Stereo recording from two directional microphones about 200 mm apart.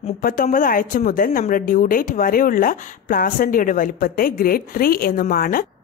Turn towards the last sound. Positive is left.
turn(degrees=45)  # may be behind; listen again after turning